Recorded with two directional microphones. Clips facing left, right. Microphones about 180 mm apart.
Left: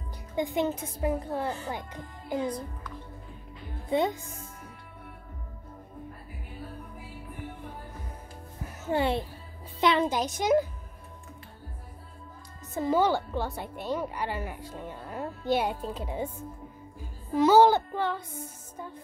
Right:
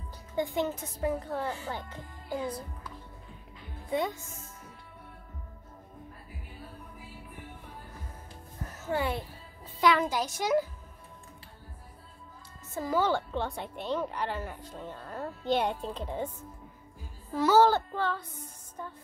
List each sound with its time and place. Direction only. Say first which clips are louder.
0.4 s a woman's voice: left 2 dB; 15° left (ahead or behind)
3.9 s a child's voice: left 4 dB; 25° left (ahead or behind)
8.9 s a child's voice: left 4 dB; 25° left (ahead or behind)
12.7 s a child's voice: left 4 dB; 20° left (ahead or behind)
13.1 s a woman's voice: left 1 dB; 5° left (ahead or behind)